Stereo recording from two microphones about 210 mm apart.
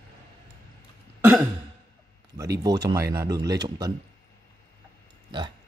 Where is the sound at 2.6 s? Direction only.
20° right (ahead or behind).